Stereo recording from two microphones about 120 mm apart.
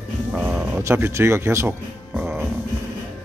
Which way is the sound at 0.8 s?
20° right (ahead or behind).